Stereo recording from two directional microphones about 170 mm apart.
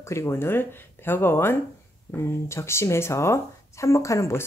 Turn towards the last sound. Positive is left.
turn(degrees=15)  # may be behind; listen again after turning